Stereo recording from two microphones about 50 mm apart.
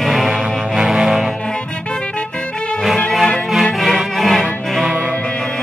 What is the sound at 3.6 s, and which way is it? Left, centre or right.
Music, centre.